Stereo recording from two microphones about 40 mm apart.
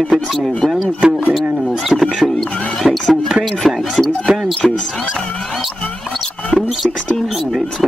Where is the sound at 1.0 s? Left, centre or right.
Right.